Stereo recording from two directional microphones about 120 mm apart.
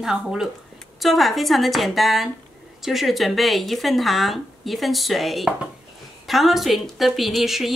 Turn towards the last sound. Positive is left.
turn(degrees=0)  # may be behind; listen again after turning